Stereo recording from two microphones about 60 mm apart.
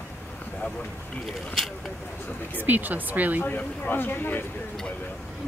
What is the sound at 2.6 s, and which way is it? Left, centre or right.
Speech, right.